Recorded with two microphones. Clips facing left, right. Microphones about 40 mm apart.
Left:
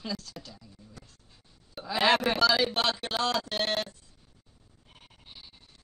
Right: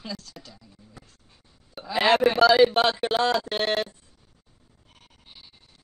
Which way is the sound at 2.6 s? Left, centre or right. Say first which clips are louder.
Right 8 dB; right.